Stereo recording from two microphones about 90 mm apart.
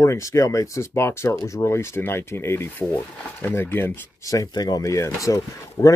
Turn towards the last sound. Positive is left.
turn(degrees=30)  # may be behind; listen again after turning